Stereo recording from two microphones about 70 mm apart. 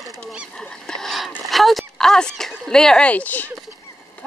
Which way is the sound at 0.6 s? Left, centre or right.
Centre.